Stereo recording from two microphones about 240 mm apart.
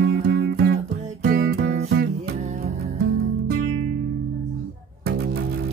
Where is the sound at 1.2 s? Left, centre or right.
Right.